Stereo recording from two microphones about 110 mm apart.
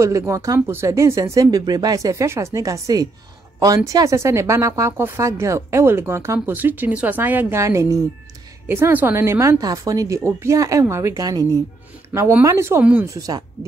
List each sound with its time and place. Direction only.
0.3 s a woman's voice: 30° right (ahead or behind)
12.1 s a woman's voice: 20° right (ahead or behind)